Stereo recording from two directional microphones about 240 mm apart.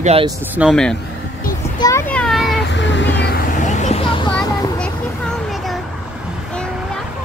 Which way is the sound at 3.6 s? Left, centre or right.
Left.